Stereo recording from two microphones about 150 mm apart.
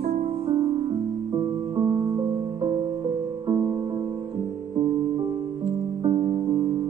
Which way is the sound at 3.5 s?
35° right (ahead or behind).